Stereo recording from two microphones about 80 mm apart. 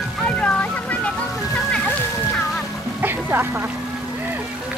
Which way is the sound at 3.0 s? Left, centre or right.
Right.